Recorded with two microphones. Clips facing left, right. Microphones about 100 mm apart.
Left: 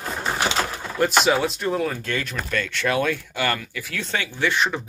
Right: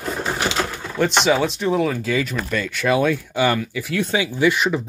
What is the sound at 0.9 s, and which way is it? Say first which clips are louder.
Speech: right 2 dB; 5° left (ahead or behind).